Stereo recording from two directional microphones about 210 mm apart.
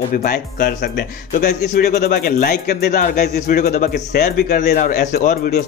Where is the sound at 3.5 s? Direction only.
35° left (ahead or behind).